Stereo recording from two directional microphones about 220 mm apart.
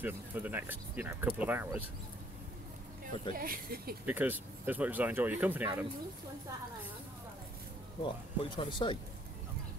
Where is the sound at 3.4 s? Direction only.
40° right (ahead or behind).